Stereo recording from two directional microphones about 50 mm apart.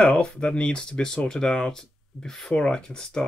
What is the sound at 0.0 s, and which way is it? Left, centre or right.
Speech, left.